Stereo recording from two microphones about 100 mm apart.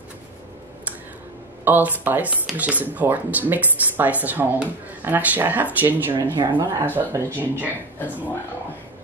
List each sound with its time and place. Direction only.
1.6 s speech: 15° right (ahead or behind)
6.3 s speech: 50° right (ahead or behind)
6.9 s speech: 25° right (ahead or behind)